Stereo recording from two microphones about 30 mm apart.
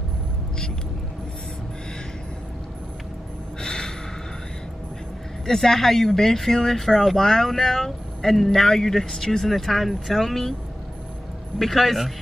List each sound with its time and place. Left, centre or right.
3.6 s gasp: left
5.5 s speech: centre
9.5 s speech: centre
11.5 s speech: centre